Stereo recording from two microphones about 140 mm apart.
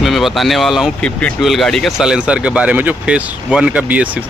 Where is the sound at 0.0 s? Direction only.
Centre (ahead or behind).